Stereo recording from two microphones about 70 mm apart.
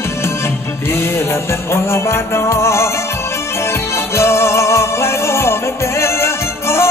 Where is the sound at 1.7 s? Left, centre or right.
Left.